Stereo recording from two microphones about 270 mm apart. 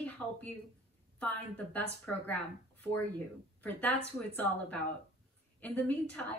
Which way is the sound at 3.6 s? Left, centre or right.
Centre.